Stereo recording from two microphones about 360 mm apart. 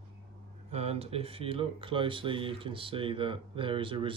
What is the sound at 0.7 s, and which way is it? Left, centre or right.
Speech, centre.